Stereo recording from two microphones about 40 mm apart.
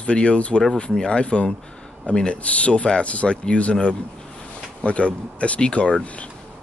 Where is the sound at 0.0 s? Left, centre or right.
Left.